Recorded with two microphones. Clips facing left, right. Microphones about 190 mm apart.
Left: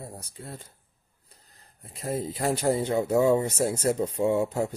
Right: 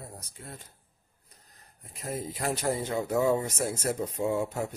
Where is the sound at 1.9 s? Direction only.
30° left (ahead or behind).